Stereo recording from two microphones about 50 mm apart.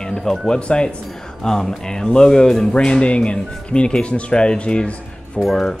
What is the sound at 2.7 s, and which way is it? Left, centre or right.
Speech, left.